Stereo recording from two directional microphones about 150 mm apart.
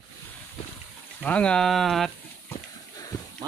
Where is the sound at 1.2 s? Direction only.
10° left (ahead or behind).